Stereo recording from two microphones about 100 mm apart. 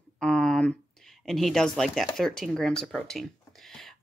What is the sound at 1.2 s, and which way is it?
Speech, 5° left (ahead or behind).